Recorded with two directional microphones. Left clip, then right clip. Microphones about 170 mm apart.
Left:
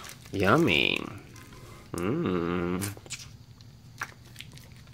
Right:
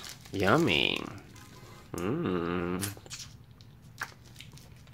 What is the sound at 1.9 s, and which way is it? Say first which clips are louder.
Dog: left 3 dB; 10° left (ahead or behind).